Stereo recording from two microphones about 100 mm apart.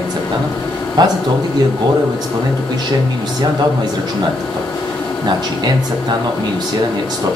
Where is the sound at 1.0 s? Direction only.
45° right (ahead or behind).